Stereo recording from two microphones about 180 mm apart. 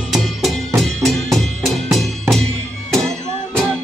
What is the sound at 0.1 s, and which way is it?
Music, centre (ahead or behind).